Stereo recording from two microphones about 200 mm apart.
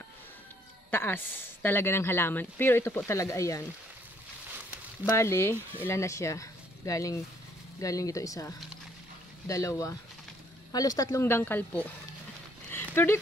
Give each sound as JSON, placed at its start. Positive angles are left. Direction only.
{"t": 0.9, "sound": "speech", "side_deg": 10}
{"t": 5.1, "sound": "speech", "side_deg": 15}
{"t": 12.7, "sound": "dog", "side_deg": 10}